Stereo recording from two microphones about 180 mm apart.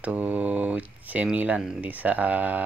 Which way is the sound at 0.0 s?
10° right (ahead or behind).